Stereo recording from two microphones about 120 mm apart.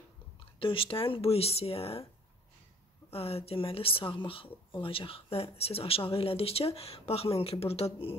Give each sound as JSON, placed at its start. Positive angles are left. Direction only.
{"t": 0.6, "sound": "speech", "side_deg": 45}
{"t": 3.1, "sound": "speech", "side_deg": 55}